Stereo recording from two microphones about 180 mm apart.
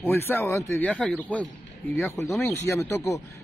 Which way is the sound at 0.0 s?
10° left (ahead or behind).